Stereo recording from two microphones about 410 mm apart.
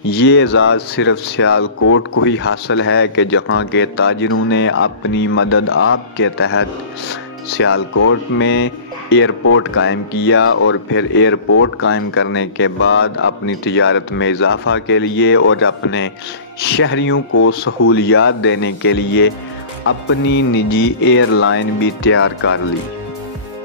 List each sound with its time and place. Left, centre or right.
0.1 s speech: left